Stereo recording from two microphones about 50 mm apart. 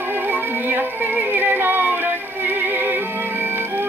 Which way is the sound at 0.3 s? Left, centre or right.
Right.